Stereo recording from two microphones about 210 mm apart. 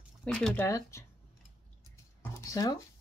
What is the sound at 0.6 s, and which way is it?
Speech, 15° left (ahead or behind).